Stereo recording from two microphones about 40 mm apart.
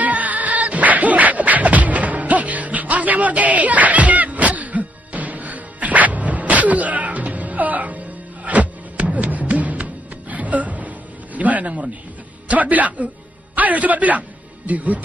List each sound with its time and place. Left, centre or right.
0.0 s music: right
11.3 s a sound: right
12.4 s a man's voice: right